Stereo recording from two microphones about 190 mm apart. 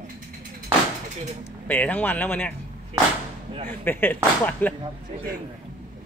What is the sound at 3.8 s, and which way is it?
Speech, 10° left (ahead or behind).